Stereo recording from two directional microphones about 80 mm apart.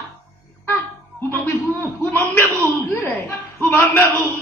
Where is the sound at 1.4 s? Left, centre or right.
Left.